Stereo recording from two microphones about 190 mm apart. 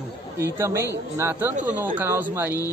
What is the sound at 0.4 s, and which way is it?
Speech, 15° right (ahead or behind).